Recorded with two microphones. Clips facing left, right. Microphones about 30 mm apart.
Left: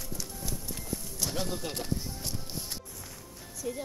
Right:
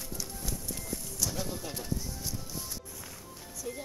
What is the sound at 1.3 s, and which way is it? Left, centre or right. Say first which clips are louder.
Music: left 3 dB; left.